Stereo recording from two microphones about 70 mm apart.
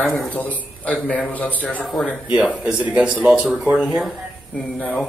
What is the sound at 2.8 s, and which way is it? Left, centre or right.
Speech, centre.